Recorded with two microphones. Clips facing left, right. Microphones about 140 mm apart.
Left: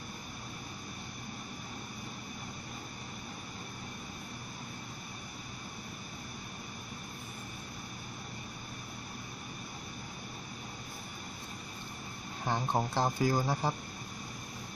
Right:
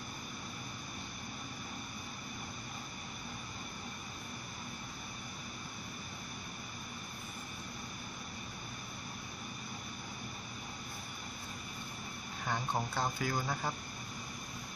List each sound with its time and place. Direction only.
12.4 s speech: 30° left (ahead or behind)